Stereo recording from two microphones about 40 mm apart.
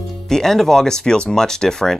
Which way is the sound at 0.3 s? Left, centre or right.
Centre.